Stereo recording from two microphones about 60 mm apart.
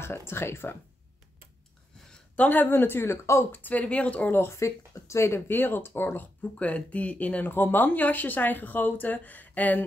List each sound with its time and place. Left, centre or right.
0.0 s speech: left
2.3 s speech: left
3.6 s speech: left
4.6 s speech: left
5.5 s speech: left
6.6 s speech: left